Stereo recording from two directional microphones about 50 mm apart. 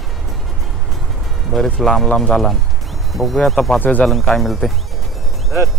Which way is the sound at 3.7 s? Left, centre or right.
Left.